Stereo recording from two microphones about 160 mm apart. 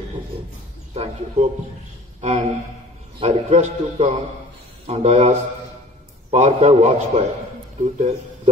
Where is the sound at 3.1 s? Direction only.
45° right (ahead or behind).